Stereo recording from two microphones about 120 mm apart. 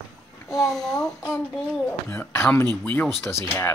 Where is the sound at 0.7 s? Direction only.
5° left (ahead or behind).